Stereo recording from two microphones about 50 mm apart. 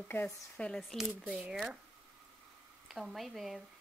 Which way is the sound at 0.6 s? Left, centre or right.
Left.